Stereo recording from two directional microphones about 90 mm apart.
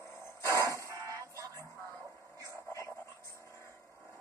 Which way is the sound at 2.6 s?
30° left (ahead or behind).